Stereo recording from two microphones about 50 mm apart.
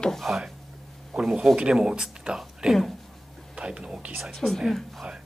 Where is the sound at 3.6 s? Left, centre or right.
Centre.